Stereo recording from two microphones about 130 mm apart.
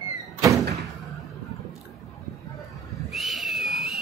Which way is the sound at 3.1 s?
Centre (ahead or behind).